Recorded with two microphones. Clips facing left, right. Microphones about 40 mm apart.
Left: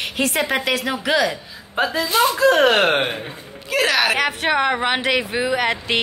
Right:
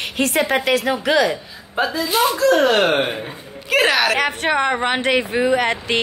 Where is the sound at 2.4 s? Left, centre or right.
Left.